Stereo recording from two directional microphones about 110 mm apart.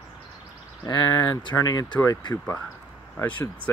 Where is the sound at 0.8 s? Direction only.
40° left (ahead or behind).